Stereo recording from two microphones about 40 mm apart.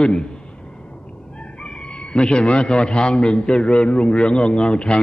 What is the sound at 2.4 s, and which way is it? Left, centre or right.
A man's voice, left.